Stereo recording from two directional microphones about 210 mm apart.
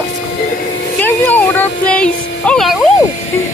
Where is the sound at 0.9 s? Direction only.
10° left (ahead or behind).